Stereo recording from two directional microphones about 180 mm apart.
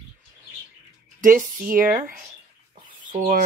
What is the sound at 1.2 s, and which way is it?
Speech, 50° right (ahead or behind).